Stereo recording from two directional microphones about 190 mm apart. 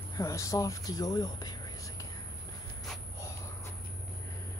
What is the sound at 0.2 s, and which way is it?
Speech, 15° left (ahead or behind).